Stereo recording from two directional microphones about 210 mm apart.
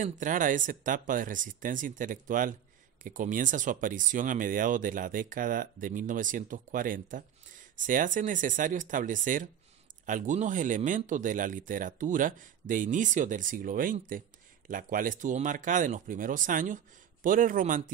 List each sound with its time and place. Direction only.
0.0 s speech: 40° right (ahead or behind)